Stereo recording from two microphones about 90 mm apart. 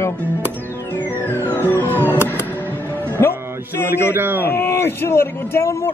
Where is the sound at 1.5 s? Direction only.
25° left (ahead or behind).